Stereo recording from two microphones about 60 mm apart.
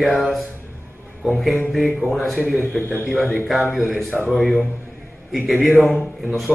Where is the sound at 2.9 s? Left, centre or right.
Left.